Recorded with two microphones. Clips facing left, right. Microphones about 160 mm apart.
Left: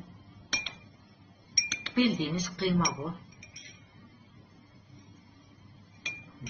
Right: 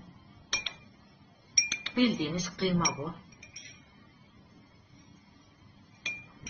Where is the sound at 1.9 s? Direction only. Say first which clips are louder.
Even; centre (ahead or behind).